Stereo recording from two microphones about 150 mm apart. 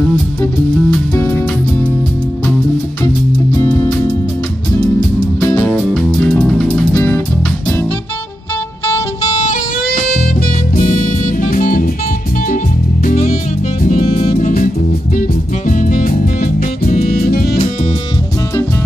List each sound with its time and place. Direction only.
0.4 s music: 15° left (ahead or behind)
3.5 s music: 15° left (ahead or behind)
5.6 s music: 5° left (ahead or behind)
9.4 s music: 60° left (ahead or behind)
13.0 s music: 55° left (ahead or behind)
15.7 s music: 65° left (ahead or behind); by 17.6 s 85° left